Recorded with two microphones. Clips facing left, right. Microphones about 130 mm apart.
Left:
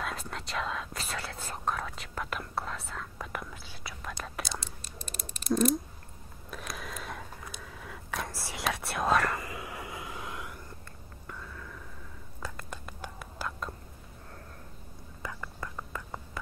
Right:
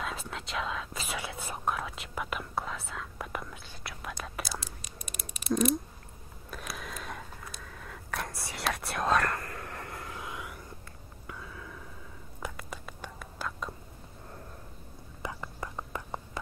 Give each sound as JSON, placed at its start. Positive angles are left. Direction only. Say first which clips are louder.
{"t": 0.0, "sound": "whispering", "louder": "even", "side_deg": 0}
{"t": 5.0, "sound": "mechanisms", "louder": "left 1 dB", "side_deg": -10}
{"t": 6.5, "sound": "a sound", "louder": "even", "side_deg": 0}
{"t": 8.6, "sound": "whispering", "louder": "left 1 dB", "side_deg": 0}
{"t": 11.2, "sound": "a sound", "louder": "right 1 dB", "side_deg": -5}
{"t": 12.6, "sound": "whispering", "louder": "even", "side_deg": 0}
{"t": 15.2, "sound": "whispering", "louder": "right 2 dB", "side_deg": -20}